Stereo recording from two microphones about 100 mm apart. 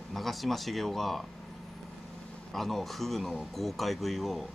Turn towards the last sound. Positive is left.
turn(degrees=0)  # may be behind; listen again after turning